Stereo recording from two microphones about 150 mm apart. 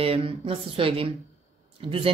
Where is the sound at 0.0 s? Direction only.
40° right (ahead or behind).